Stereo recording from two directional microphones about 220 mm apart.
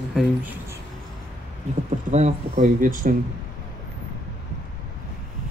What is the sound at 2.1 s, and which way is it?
Speech, 35° right (ahead or behind).